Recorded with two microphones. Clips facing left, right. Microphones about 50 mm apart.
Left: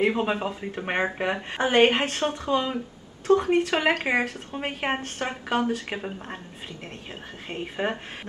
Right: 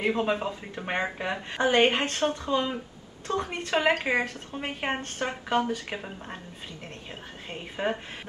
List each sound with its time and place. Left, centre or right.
0.0 s speech: centre
5.9 s speech: centre
7.4 s speech: centre